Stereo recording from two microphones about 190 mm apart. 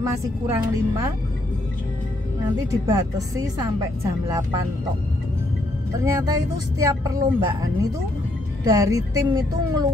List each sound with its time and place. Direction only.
0.0 s speech: 15° right (ahead or behind)
2.7 s speech: 15° right (ahead or behind)
5.9 s speech: 15° right (ahead or behind)
8.6 s speech: 15° right (ahead or behind)